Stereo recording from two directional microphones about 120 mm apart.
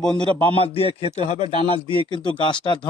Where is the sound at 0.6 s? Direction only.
55° left (ahead or behind).